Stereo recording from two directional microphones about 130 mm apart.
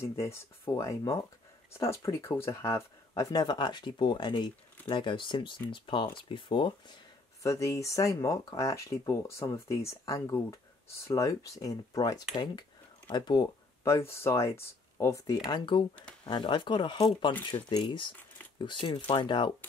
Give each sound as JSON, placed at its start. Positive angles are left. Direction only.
{"t": 0.0, "sound": "speech", "side_deg": 20}
{"t": 7.4, "sound": "speech", "side_deg": 25}
{"t": 13.8, "sound": "speech", "side_deg": 20}